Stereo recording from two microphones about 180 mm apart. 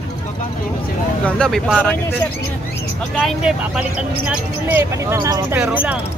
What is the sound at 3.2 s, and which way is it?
Speech, centre (ahead or behind).